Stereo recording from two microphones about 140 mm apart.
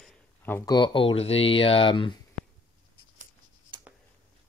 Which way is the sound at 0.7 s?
35° left (ahead or behind).